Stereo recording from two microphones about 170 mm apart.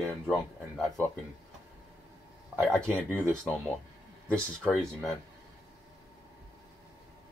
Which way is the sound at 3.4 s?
5° left (ahead or behind).